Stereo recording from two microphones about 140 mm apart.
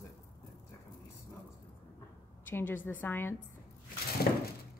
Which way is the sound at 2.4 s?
15° left (ahead or behind).